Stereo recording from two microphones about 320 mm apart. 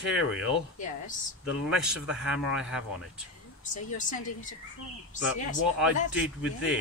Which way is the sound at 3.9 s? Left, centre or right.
Left.